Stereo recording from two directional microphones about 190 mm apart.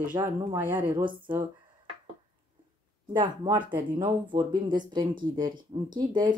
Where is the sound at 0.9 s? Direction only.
25° right (ahead or behind).